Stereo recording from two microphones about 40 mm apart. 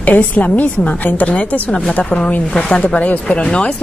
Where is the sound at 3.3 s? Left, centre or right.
Left.